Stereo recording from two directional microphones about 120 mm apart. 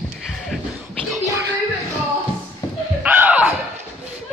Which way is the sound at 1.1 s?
25° right (ahead or behind).